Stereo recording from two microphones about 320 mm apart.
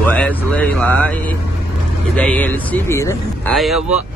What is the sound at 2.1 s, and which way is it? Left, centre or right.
Speech, centre.